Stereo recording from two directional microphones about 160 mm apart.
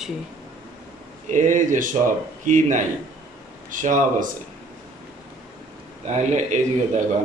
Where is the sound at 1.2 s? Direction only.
55° right (ahead or behind).